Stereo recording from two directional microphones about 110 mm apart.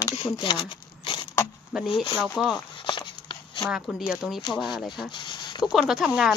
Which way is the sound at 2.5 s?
45° left (ahead or behind).